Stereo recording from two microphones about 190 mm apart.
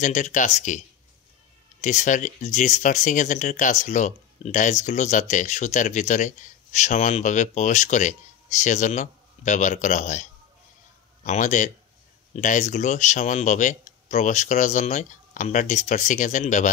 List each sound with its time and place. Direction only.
0.0 s speech: 40° left (ahead or behind)
11.2 s speech: 40° left (ahead or behind)